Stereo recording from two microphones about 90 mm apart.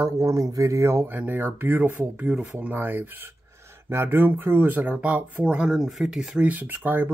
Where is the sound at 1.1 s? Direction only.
20° right (ahead or behind); by 6.4 s 5° right (ahead or behind).